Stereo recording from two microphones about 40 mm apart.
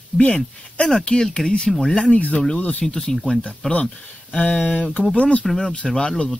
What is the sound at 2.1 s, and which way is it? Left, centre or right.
Speech, left.